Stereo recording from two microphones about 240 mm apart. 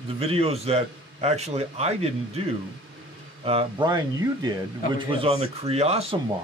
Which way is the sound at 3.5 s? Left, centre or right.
Right.